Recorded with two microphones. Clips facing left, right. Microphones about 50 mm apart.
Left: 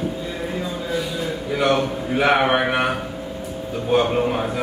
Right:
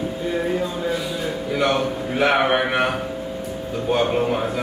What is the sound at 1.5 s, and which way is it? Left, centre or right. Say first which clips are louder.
Speech: left 1 dB; centre.